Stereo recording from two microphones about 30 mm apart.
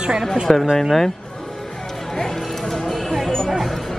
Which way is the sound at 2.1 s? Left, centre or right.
Centre.